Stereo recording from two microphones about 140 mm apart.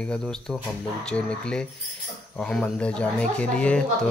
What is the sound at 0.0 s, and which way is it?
Speech, 5° left (ahead or behind).